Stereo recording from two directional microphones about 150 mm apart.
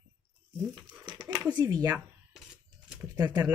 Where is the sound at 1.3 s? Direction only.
25° right (ahead or behind).